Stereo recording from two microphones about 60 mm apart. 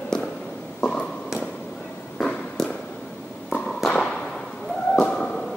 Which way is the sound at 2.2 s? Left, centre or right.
Centre.